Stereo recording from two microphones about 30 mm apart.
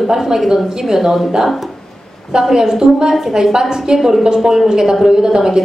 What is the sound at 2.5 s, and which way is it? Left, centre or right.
A woman's voice, centre.